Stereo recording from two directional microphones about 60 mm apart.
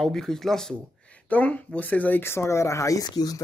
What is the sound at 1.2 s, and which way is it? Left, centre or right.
Speech, left.